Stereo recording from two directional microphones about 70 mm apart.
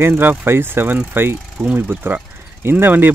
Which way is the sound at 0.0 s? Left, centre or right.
Right.